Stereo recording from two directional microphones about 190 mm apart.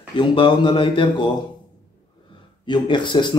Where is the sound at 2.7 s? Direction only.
25° left (ahead or behind).